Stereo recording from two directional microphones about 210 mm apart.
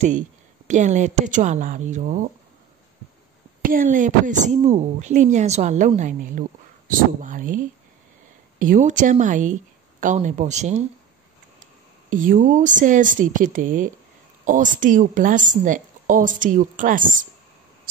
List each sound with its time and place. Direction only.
0.7 s a woman's voice: 35° right (ahead or behind)
3.6 s a woman's voice: 40° right (ahead or behind)